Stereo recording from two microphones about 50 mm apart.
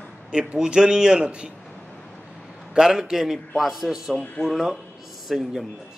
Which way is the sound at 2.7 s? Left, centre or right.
Centre.